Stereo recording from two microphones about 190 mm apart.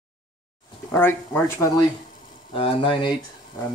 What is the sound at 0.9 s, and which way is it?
Speech, 10° left (ahead or behind).